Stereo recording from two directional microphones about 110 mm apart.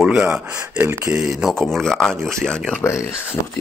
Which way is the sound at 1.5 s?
5° left (ahead or behind).